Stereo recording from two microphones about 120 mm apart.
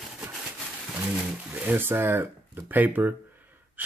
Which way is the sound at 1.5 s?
15° right (ahead or behind).